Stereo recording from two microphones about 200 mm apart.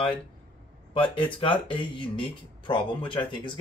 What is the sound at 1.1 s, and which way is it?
Speech, 25° left (ahead or behind).